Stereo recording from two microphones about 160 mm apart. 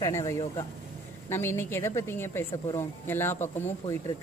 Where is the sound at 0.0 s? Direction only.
20° left (ahead or behind).